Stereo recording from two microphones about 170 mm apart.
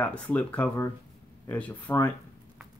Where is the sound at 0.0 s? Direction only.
10° left (ahead or behind).